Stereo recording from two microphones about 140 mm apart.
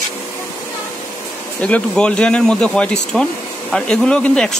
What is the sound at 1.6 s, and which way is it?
Speech, 10° left (ahead or behind).